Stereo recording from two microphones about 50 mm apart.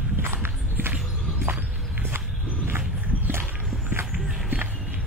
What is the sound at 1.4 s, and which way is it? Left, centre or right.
Walk, right.